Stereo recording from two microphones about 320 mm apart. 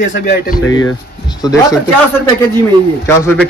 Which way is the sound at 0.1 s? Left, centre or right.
Left.